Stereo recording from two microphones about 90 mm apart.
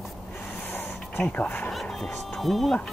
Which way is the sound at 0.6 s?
25° left (ahead or behind).